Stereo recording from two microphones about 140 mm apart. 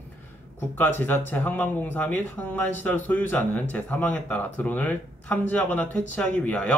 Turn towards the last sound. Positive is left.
turn(degrees=10)  # may be behind; listen again after turning